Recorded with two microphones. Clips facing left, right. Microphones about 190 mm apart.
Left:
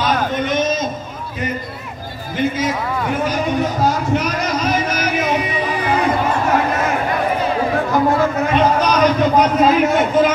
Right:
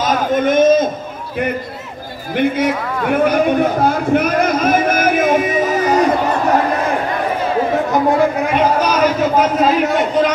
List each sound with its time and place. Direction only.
0.0 s a sound: 50° right (ahead or behind)
2.3 s a man's voice: 60° right (ahead or behind); by 6.0 s 40° right (ahead or behind)
7.9 s a man's voice: 15° right (ahead or behind); by 10.3 s centre (ahead or behind)